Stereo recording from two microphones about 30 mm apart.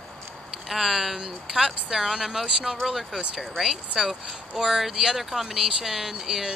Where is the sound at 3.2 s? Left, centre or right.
Right.